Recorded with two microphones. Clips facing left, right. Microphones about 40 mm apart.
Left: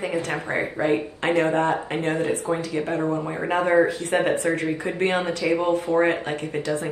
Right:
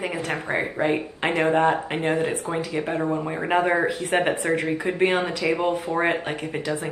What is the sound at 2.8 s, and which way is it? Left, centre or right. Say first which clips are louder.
Speech: even; centre.